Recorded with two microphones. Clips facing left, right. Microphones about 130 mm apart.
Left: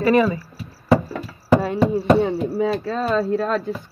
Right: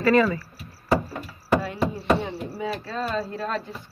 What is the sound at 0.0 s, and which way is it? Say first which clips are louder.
Speech: left 3 dB; 20° left (ahead or behind).